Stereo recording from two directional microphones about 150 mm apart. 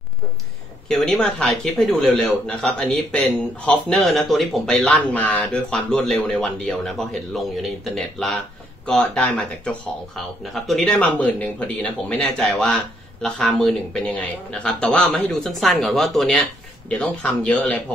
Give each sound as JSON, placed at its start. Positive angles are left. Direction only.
{"t": 0.8, "sound": "speech", "side_deg": 5}